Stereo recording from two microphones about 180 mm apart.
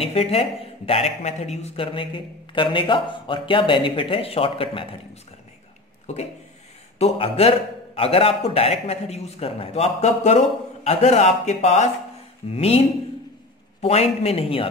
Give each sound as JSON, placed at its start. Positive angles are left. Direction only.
{"t": 0.0, "sound": "speech", "side_deg": 35}
{"t": 7.0, "sound": "a man's voice", "side_deg": 35}